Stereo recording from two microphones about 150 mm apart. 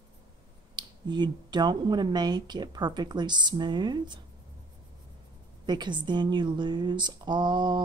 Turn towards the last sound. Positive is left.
turn(degrees=-30)  # may be behind; listen again after turning